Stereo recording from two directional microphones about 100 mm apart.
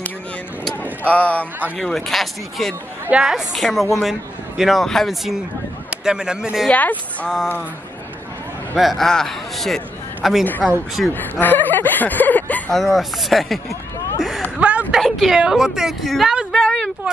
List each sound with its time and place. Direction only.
1.0 s speech: 15° left (ahead or behind)
1.8 s a woman's voice: 5° left (ahead or behind)
3.1 s a woman's voice: 10° right (ahead or behind)
6.7 s speech: 15° left (ahead or behind)
8.7 s a woman's voice: centre (ahead or behind)
11.1 s speech: 20° left (ahead or behind)
12.7 s a woman's voice: centre (ahead or behind)
14.6 s a sound: 15° right (ahead or behind)
15.0 s a woman's voice: centre (ahead or behind)
16.5 s a sound: 10° left (ahead or behind)